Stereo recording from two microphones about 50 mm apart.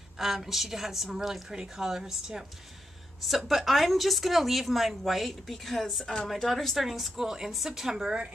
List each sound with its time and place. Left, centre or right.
0.2 s a woman's voice: centre